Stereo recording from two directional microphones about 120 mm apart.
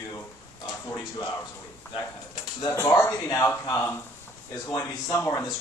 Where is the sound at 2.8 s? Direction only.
25° left (ahead or behind).